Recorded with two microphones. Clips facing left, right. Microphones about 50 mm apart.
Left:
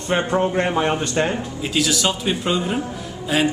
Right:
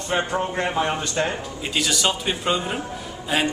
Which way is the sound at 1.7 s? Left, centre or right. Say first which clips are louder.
Left 2 dB; centre.